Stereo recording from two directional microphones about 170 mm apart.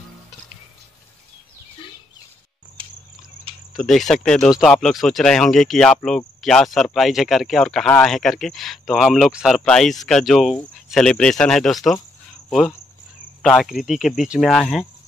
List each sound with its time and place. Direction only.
2.8 s cricket: 30° right (ahead or behind)
3.7 s speech: centre (ahead or behind)